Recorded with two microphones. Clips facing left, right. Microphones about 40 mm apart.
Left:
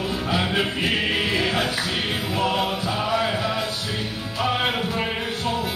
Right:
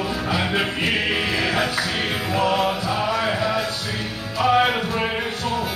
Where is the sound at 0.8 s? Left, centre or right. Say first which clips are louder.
Right 1 dB; centre.